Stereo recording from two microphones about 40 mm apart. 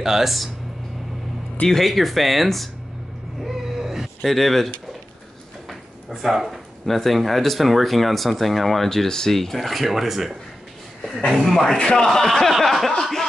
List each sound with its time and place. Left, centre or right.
0.0 s speech: centre
1.7 s speech: centre
3.4 s a sound: centre
4.3 s speech: centre
5.7 s a sound: centre
6.9 s speech: centre
11.3 s speech: centre
11.8 s a man's voice: left
12.1 s a sound: centre